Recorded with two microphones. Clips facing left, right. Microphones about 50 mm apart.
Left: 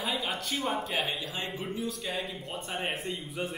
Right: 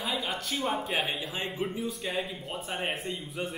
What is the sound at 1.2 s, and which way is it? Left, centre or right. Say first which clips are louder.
Speech: right 1 dB; centre.